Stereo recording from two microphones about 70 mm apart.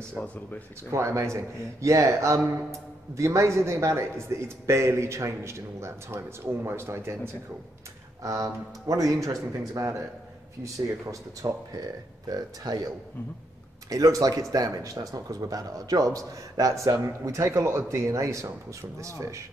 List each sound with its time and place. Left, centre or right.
0.8 s speech: right
8.2 s speech: right